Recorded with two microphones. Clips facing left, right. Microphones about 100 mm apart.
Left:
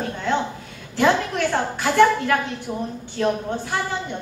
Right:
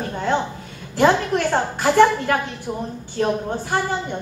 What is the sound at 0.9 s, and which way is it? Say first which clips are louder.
A woman's voice: right 2 dB; 45° right (ahead or behind).